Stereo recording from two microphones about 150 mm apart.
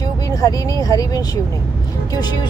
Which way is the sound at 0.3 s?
25° left (ahead or behind).